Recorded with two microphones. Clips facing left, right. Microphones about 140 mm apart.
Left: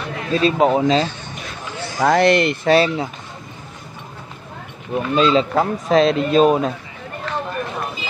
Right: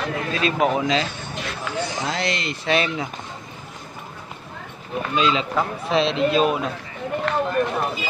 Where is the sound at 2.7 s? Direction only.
35° left (ahead or behind).